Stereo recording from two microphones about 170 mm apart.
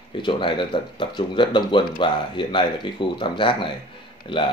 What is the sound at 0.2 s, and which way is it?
Speech, 30° left (ahead or behind).